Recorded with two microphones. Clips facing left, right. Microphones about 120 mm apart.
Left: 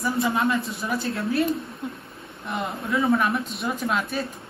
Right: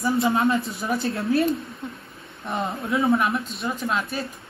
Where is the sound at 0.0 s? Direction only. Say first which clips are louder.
Right 2 dB; 25° right (ahead or behind).